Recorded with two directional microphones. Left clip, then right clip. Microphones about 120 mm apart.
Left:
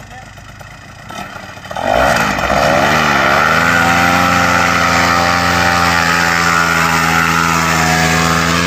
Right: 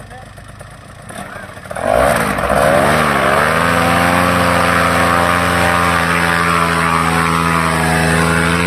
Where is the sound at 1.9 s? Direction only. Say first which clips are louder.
Left 1 dB; 20° right (ahead or behind).